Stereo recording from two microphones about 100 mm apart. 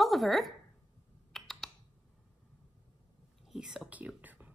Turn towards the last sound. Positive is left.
turn(degrees=-15)  # may be behind; listen again after turning